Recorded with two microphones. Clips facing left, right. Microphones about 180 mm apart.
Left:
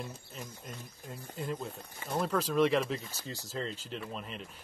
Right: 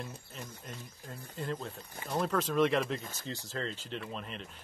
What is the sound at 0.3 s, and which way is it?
Speech, 5° left (ahead or behind).